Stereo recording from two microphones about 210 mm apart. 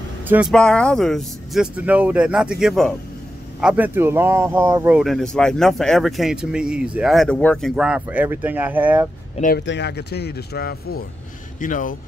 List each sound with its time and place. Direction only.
0.3 s speech: 5° right (ahead or behind)
9.6 s speech: 55° left (ahead or behind); by 12.0 s 40° left (ahead or behind)